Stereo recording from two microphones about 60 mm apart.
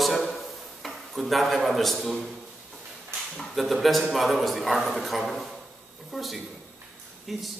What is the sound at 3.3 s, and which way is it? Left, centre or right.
A man's voice, centre.